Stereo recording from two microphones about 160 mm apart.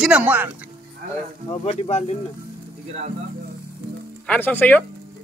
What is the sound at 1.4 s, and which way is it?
Speech, 40° left (ahead or behind).